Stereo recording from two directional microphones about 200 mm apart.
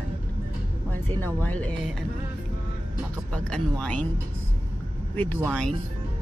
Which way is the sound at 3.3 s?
5° left (ahead or behind).